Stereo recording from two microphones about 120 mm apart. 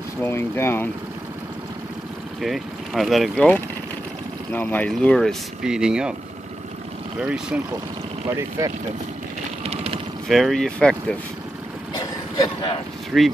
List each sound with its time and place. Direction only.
0.2 s speech: 20° left (ahead or behind)
2.4 s speech: centre (ahead or behind)
3.3 s speech: 10° left (ahead or behind); by 6.1 s 5° right (ahead or behind)
7.2 s speech: 5° right (ahead or behind)
8.4 s speech: 25° right (ahead or behind)
9.6 s a sound: 55° right (ahead or behind)
10.2 s speech: centre (ahead or behind)
13.1 s speech: 5° right (ahead or behind)